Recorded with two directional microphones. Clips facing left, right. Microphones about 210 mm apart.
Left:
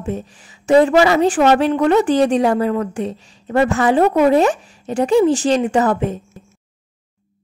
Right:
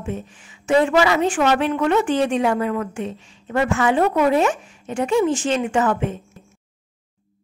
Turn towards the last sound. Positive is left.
turn(degrees=35)  # may be behind; listen again after turning